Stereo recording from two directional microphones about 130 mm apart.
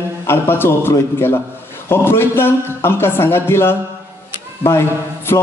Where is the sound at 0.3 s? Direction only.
20° left (ahead or behind).